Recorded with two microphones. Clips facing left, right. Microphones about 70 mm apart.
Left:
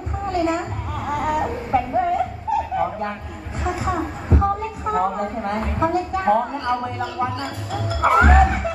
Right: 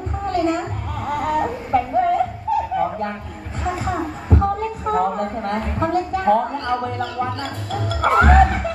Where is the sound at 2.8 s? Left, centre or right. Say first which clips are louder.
Right 1 dB; centre.